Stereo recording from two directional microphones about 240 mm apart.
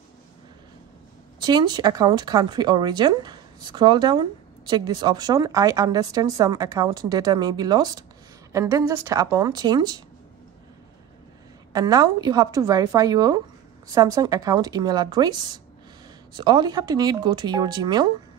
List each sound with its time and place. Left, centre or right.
1.4 s speech: centre
11.7 s speech: centre